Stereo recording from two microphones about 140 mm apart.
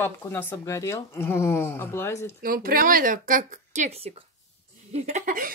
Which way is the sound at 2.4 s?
90° right.